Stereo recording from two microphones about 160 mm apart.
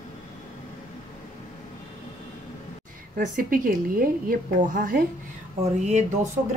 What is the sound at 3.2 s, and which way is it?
A woman's voice, 60° right (ahead or behind).